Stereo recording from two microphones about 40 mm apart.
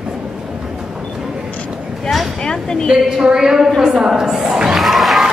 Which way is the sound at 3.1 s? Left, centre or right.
Centre.